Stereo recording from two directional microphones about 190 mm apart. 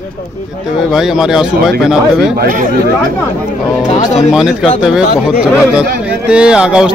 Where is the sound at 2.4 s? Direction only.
45° right (ahead or behind).